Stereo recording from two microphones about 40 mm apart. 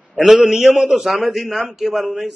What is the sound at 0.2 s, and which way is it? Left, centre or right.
A man's voice, centre.